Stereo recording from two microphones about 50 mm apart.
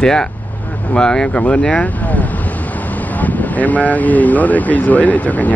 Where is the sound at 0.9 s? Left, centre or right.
Centre.